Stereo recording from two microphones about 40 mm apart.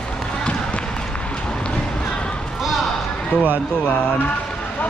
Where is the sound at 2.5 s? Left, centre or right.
Centre.